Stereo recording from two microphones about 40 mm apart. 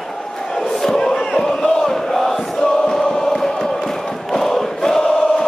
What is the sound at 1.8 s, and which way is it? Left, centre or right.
Chant, centre.